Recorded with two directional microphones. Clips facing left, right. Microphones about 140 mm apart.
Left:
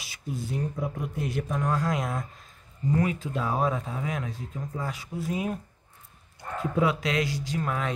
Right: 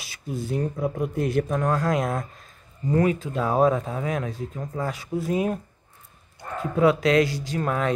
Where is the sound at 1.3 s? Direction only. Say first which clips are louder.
Right 4 dB; 50° right (ahead or behind).